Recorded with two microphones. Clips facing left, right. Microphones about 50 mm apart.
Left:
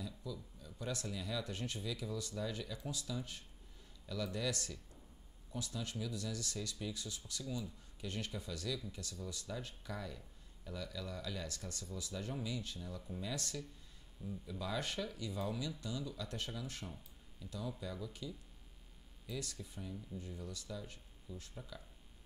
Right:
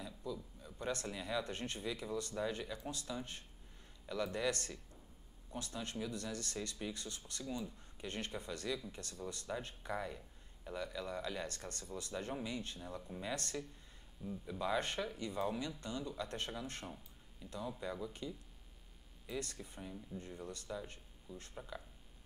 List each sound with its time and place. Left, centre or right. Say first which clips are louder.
0.0 s a sound: right 2 dB; right
1.0 s speech: right 2 dB; right
14.2 s speech: right 4 dB; right
19.2 s speech: right 2 dB; right